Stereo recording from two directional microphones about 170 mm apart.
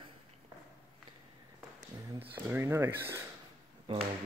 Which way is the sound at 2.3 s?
15° right (ahead or behind).